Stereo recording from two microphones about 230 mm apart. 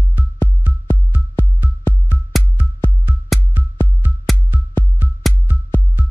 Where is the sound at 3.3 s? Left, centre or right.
Centre.